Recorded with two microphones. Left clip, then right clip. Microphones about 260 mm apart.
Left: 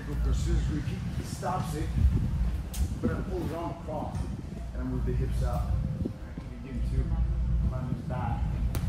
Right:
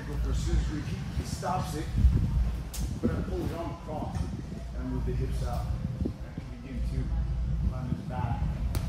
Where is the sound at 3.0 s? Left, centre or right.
Centre.